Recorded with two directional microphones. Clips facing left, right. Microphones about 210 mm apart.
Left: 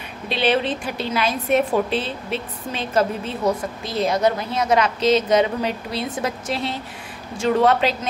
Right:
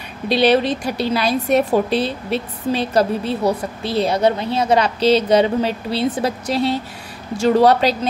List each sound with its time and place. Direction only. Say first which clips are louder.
0.3 s a woman's voice: right 5 dB; 40° right (ahead or behind)